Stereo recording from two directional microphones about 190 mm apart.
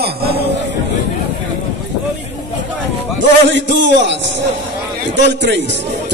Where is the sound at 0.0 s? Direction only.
55° right (ahead or behind).